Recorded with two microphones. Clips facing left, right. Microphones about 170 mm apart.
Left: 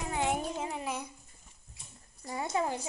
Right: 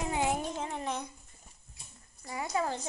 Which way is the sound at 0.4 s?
5° left (ahead or behind).